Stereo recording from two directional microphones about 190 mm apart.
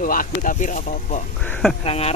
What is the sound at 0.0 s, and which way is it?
Speech, 45° left (ahead or behind).